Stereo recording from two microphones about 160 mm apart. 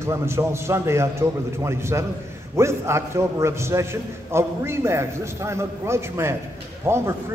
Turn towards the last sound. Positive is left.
turn(degrees=-15)  # may be behind; listen again after turning